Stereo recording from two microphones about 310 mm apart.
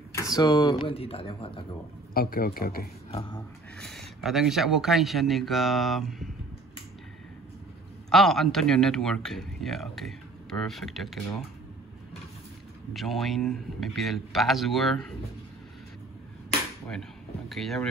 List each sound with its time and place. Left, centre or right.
0.4 s speech: centre
2.1 s a man's voice: left
3.7 s speech: centre
8.1 s speech: centre
12.9 s speech: centre
17.5 s speech: centre